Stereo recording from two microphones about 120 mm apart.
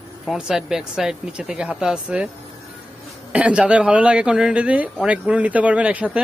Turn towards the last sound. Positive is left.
turn(degrees=-10)  # may be behind; listen again after turning